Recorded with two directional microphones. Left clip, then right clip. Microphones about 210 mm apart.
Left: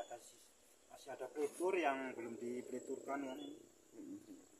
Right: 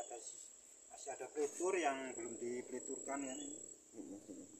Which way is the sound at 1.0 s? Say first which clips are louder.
Right 1 dB; centre (ahead or behind).